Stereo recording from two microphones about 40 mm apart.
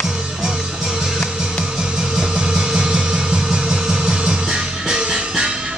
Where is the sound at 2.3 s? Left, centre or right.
Centre.